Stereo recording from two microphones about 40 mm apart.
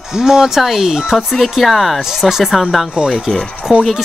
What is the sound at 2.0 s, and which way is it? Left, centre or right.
Speech, centre.